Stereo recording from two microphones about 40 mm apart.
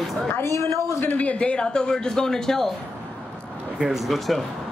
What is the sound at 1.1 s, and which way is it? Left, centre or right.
A man's voice, left.